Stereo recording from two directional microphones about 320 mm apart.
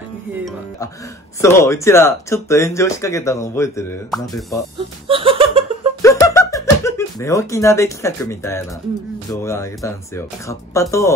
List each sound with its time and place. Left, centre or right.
1.4 s speech: centre
5.0 s laughter: centre
6.0 s a sound: centre
9.3 s speech: centre